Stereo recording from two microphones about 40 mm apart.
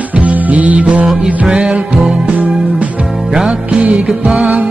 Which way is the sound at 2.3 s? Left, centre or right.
Right.